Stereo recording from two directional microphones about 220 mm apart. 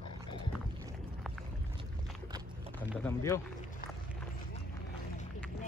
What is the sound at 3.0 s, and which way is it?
Speech, 10° left (ahead or behind).